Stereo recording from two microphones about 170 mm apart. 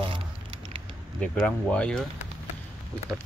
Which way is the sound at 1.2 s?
5° left (ahead or behind).